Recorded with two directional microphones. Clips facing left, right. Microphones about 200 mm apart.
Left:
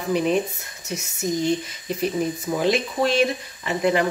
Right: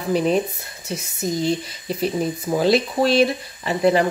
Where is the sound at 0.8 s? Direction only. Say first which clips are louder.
Right 1 dB; 30° right (ahead or behind).